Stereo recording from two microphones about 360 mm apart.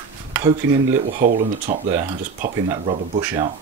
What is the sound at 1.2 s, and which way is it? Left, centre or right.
Speech, right.